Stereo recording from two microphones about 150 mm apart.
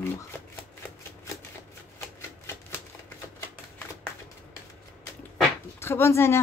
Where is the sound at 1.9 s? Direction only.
15° left (ahead or behind).